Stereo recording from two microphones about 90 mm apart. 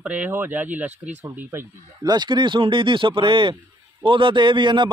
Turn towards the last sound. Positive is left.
turn(degrees=-60)  # may be behind; listen again after turning